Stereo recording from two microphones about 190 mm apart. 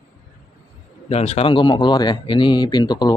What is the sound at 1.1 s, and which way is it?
A man's voice, 35° left (ahead or behind).